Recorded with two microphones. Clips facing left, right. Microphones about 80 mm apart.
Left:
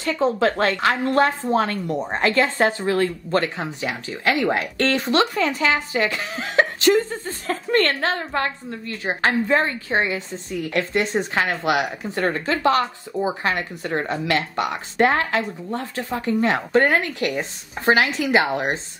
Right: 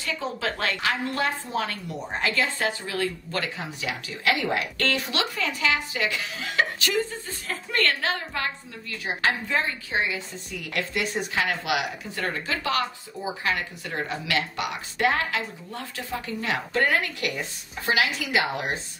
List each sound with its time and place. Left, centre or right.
0.0 s a woman's voice: left